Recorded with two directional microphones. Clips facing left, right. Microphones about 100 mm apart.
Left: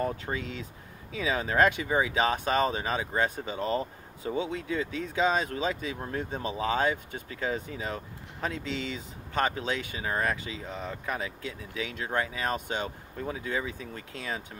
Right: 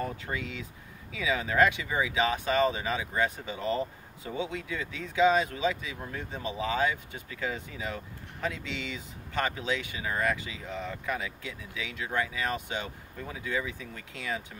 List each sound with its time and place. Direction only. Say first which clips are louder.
0.0 s speech: left 3 dB; 35° left (ahead or behind)